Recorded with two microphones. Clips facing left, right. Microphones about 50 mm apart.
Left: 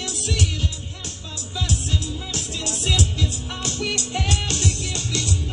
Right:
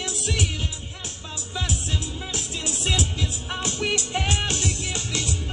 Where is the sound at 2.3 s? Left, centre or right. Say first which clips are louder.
Even; centre.